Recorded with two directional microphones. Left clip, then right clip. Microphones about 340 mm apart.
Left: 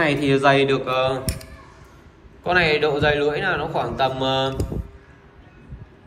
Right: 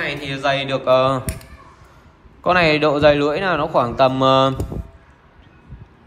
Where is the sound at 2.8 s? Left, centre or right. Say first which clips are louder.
Right 5 dB; centre.